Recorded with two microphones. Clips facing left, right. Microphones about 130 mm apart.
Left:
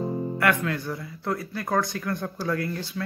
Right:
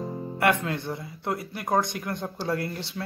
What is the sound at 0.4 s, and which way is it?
Speech, 25° right (ahead or behind).